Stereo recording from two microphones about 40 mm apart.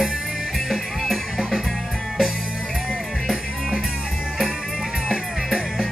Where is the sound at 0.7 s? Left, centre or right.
Centre.